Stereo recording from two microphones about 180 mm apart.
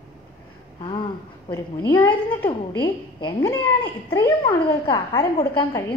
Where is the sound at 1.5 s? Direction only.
20° left (ahead or behind).